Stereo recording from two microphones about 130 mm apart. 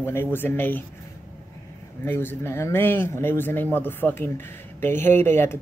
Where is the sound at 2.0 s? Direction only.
15° left (ahead or behind).